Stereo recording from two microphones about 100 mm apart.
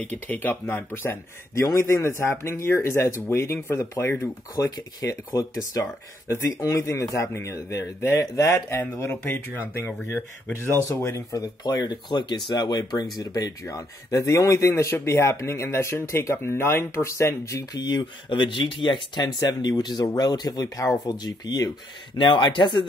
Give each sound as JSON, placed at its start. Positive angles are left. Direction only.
{"t": 0.0, "sound": "speech", "side_deg": 15}
{"t": 4.6, "sound": "speech", "side_deg": 40}
{"t": 11.3, "sound": "speech", "side_deg": 40}
{"t": 17.7, "sound": "speech", "side_deg": 45}
{"t": 20.6, "sound": "speech", "side_deg": 30}
{"t": 22.1, "sound": "speech", "side_deg": 55}